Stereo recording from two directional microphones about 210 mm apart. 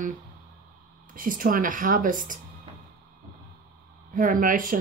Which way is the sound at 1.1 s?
40° right (ahead or behind).